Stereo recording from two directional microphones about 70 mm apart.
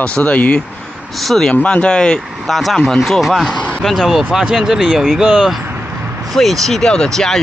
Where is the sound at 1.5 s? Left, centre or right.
Centre.